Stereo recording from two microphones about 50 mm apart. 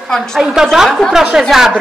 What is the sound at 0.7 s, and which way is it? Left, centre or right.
A woman's voice, centre.